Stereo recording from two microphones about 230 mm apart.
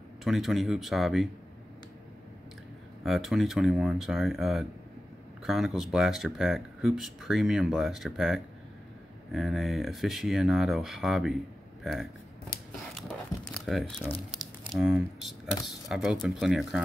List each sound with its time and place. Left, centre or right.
0.2 s speech: centre
3.0 s speech: centre
12.5 s a sound: left
13.5 s speech: centre